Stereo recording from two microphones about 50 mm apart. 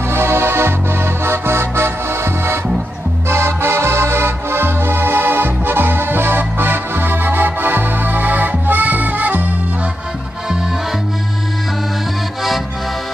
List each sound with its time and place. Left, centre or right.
0.1 s accordion: right
3.3 s music: right